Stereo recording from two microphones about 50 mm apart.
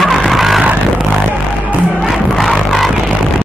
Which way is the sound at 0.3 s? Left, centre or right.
Centre.